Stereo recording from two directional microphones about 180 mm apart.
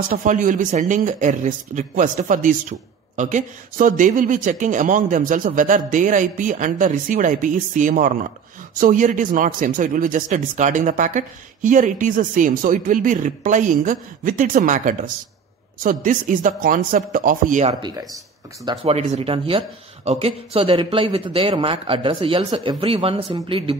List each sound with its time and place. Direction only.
0.1 s speech: 45° right (ahead or behind); by 23.8 s 30° right (ahead or behind)